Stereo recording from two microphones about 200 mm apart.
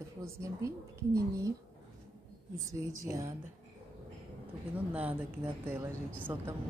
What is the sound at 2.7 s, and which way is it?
Speech, 15° right (ahead or behind).